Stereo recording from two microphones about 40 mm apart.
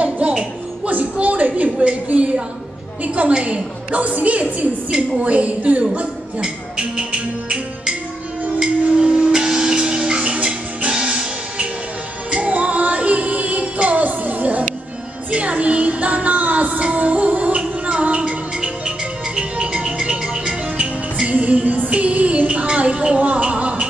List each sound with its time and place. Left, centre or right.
0.2 s music: right
1.2 s a sound: right
3.3 s a woman's voice: right
6.4 s music: right
8.6 s music: right
9.1 s music: centre
21.3 s music: right
22.8 s a sound: right
23.1 s a sound: right